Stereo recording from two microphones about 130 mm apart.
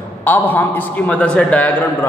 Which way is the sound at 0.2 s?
15° left (ahead or behind).